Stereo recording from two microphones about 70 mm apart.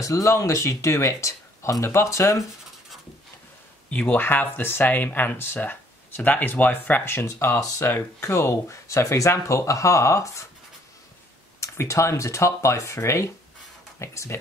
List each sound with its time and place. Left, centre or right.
0.0 s speech: left
3.9 s speech: left
11.6 s speech: left